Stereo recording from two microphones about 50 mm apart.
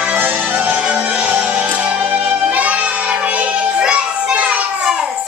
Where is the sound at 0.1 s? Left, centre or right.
Right.